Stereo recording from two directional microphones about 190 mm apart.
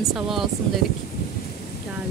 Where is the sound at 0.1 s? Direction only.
Centre (ahead or behind).